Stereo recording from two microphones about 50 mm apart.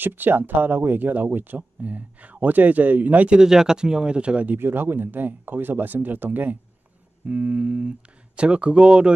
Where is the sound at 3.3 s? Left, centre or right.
Centre.